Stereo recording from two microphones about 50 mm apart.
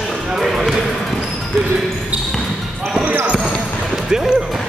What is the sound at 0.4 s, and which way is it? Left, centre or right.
Basketball bounce, centre.